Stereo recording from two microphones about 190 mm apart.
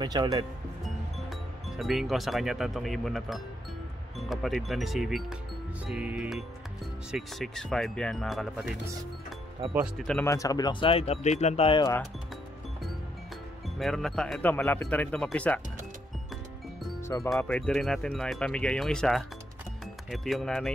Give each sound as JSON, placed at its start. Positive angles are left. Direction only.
{"t": 0.0, "sound": "speech", "side_deg": -20}
{"t": 1.8, "sound": "speech", "side_deg": 0}
{"t": 9.8, "sound": "speech", "side_deg": 0}
{"t": 10.2, "sound": "speech", "side_deg": 15}
{"t": 13.7, "sound": "speech", "side_deg": 0}
{"t": 17.4, "sound": "speech", "side_deg": 5}